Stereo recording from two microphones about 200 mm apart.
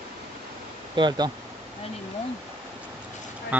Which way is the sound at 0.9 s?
25° right (ahead or behind).